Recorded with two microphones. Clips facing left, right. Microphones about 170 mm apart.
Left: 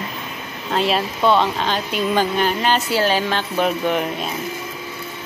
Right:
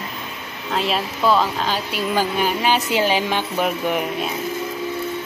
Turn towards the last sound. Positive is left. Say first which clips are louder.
# left 1 dB
turn(degrees=-5)  # may be behind; listen again after turning